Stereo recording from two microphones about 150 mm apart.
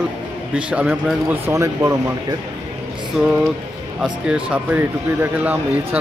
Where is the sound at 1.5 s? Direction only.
20° right (ahead or behind).